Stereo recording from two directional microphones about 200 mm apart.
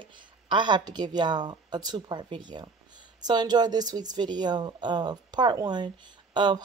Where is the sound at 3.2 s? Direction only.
20° right (ahead or behind).